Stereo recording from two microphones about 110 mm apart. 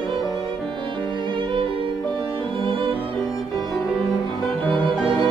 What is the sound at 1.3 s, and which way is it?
Music, 50° right (ahead or behind).